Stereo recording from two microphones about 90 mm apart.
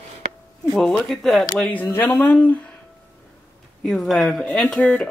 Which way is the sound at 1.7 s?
20° left (ahead or behind).